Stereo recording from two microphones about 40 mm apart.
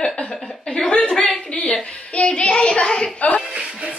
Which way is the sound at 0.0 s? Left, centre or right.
Left.